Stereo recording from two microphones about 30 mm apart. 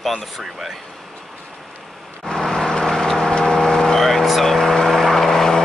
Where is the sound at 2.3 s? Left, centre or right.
Centre.